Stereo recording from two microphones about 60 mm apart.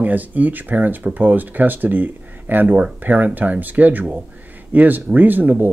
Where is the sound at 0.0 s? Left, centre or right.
Right.